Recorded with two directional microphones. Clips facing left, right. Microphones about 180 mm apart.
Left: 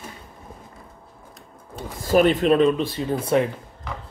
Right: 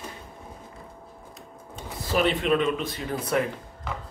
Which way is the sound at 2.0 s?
45° left (ahead or behind).